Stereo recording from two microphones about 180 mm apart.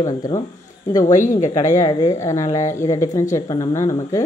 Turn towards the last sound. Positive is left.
turn(degrees=15)  # may be behind; listen again after turning